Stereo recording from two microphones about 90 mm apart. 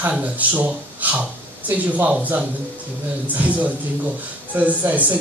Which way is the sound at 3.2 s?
15° right (ahead or behind).